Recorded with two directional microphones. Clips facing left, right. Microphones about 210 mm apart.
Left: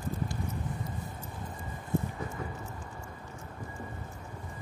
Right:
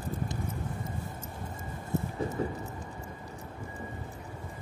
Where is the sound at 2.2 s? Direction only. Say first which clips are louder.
Right 6 dB; 40° right (ahead or behind).